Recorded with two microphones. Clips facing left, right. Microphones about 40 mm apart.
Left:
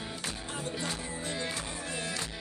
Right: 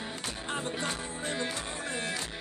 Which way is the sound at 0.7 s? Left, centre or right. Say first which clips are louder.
Right 1 dB; right.